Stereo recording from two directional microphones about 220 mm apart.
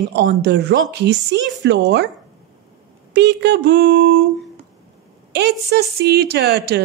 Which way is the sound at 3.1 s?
50° right (ahead or behind).